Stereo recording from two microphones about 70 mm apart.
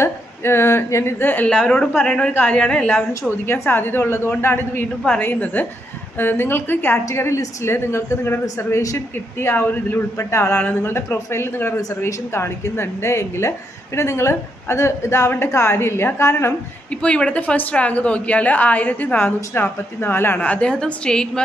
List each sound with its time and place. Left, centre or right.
0.0 s a sound: left
1.2 s a woman's voice: left
1.5 s a woman's voice: centre
3.1 s a woman's voice: left
7.1 s a woman's voice: left
17.0 s a woman's voice: centre
20.4 s a woman's voice: centre